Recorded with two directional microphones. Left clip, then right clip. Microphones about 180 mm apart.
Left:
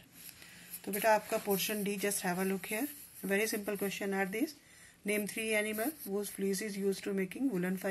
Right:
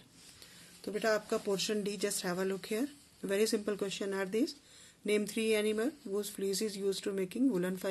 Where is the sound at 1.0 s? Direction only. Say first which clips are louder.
Left 3 dB; 40° right (ahead or behind).